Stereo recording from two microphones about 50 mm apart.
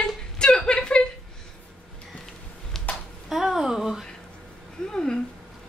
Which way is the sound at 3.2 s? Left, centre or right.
Centre.